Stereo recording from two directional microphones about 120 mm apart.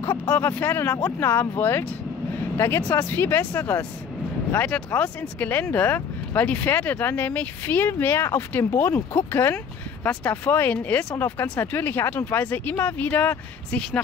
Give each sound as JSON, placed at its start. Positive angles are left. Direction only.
{"t": 0.0, "sound": "speech", "side_deg": 15}